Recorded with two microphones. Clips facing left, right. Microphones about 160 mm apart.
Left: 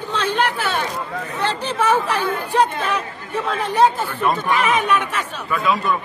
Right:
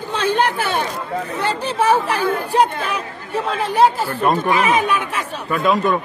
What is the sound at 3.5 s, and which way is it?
Speech, 35° right (ahead or behind).